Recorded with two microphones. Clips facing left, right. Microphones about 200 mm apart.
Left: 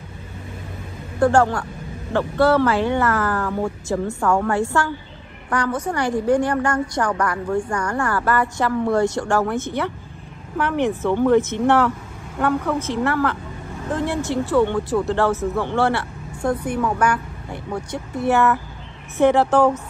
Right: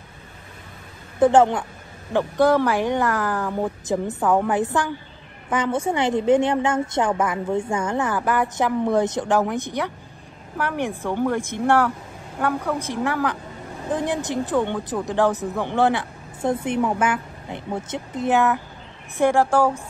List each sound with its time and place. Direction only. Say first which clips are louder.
1.2 s speech: right 1 dB; 20° right (ahead or behind)
11.0 s speech: left 8 dB; 15° right (ahead or behind)